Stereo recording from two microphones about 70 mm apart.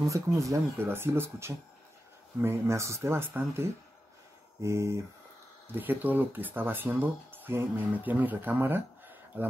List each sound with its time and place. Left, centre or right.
0.1 s speech: right
0.7 s speech: right
5.8 s speech: right